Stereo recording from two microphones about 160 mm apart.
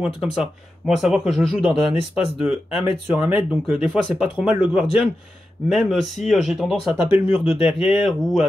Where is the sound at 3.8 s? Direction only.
5° right (ahead or behind).